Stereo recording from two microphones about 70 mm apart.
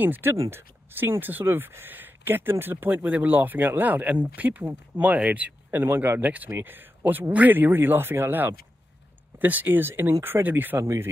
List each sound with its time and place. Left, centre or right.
0.0 s speech: right
10.8 s speech: right